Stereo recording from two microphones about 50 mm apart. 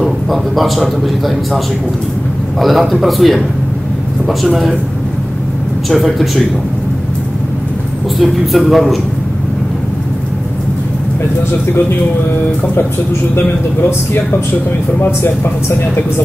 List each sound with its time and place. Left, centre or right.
0.0 s a man's voice: centre
2.6 s a man's voice: centre
5.9 s a man's voice: centre
8.2 s a man's voice: centre
13.4 s speech: left